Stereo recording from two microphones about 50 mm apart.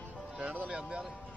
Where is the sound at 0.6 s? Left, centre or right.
Centre.